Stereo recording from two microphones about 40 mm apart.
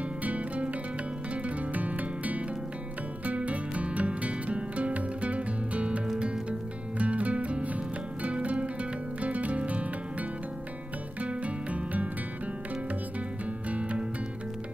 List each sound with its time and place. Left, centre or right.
0.2 s music: right
11.1 s music: right
13.7 s music: right